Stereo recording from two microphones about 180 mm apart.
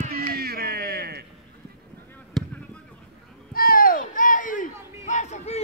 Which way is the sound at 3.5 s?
55° left (ahead or behind).